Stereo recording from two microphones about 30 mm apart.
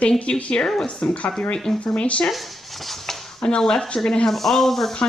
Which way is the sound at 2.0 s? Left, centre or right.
Left.